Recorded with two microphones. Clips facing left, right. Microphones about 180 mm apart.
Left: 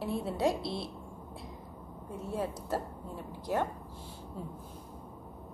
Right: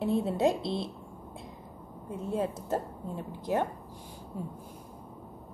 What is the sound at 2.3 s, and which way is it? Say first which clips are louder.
A woman's voice: right 3 dB; 20° right (ahead or behind).